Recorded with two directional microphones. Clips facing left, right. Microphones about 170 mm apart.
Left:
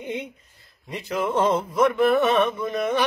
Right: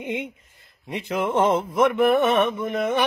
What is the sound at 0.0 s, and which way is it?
Speech, 20° right (ahead or behind).